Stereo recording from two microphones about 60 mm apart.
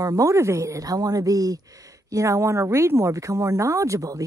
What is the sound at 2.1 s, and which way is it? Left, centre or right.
Speech, right.